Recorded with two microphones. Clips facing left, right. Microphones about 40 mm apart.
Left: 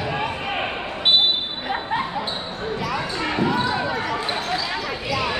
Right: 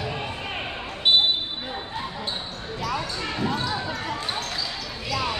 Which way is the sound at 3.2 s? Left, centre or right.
Left.